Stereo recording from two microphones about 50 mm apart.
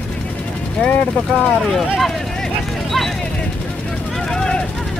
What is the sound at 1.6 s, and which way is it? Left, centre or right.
Speech, centre.